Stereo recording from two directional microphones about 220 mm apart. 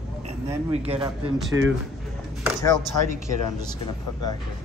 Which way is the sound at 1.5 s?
10° right (ahead or behind).